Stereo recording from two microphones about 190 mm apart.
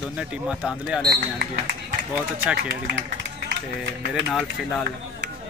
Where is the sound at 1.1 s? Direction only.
50° right (ahead or behind).